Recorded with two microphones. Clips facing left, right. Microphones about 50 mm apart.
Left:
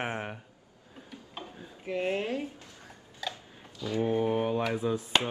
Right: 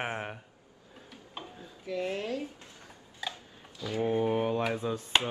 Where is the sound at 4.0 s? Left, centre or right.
Centre.